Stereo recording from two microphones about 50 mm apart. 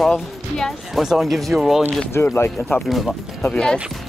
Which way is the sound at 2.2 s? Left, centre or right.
Left.